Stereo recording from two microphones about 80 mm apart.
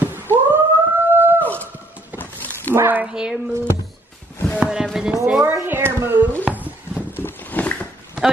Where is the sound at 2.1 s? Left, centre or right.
Left.